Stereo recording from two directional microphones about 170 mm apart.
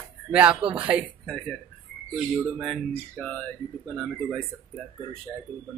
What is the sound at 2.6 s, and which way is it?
Speech, 5° left (ahead or behind).